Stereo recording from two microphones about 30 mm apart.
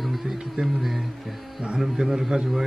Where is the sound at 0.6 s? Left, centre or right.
Right.